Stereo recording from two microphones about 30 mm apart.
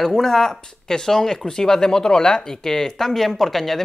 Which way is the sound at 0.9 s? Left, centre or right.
Left.